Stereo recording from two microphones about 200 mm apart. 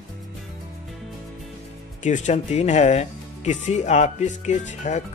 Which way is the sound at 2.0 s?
35° left (ahead or behind).